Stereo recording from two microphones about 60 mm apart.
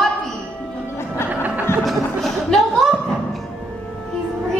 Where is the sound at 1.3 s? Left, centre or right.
Right.